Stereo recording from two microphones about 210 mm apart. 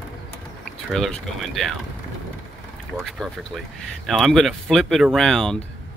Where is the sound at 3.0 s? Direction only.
Centre (ahead or behind).